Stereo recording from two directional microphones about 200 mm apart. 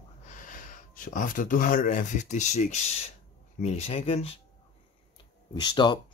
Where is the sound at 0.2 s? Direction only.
40° left (ahead or behind).